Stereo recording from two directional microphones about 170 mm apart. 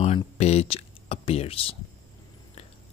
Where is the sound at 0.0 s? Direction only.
40° left (ahead or behind).